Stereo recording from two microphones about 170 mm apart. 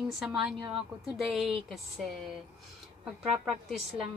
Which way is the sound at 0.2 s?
Centre (ahead or behind).